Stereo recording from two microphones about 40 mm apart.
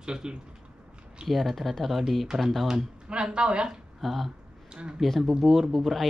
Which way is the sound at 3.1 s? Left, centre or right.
Right.